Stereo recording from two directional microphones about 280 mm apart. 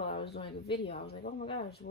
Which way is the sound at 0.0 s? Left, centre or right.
Centre.